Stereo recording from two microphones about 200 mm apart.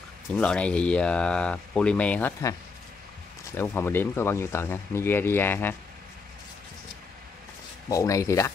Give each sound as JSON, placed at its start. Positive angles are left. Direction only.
{"t": 0.4, "sound": "speech", "side_deg": 5}
{"t": 3.5, "sound": "speech", "side_deg": 10}
{"t": 7.9, "sound": "speech", "side_deg": 15}